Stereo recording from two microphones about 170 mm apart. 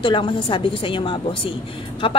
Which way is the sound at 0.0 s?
30° left (ahead or behind).